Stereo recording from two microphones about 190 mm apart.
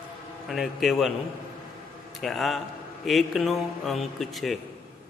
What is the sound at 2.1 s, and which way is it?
Speech, centre (ahead or behind).